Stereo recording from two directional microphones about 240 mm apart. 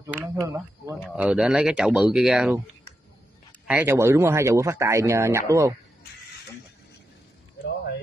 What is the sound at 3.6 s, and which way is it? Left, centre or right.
Speech, centre.